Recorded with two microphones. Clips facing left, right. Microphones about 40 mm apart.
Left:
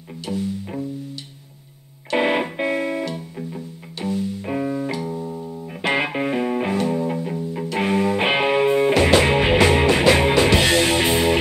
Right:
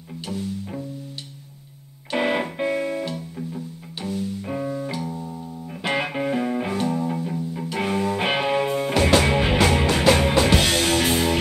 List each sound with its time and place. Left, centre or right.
0.3 s music: centre
2.1 s music: centre